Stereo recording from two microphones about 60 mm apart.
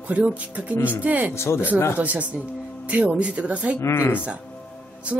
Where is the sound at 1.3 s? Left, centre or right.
Left.